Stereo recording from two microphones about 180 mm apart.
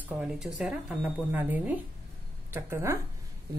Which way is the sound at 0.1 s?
15° right (ahead or behind).